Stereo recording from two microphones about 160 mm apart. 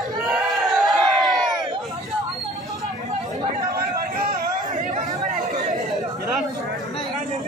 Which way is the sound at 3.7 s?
65° right (ahead or behind).